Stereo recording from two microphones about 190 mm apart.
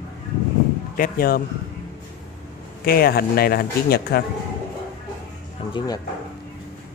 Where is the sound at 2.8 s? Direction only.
55° left (ahead or behind).